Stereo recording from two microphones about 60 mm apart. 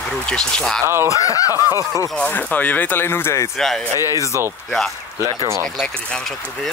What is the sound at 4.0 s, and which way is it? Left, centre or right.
Speech, left.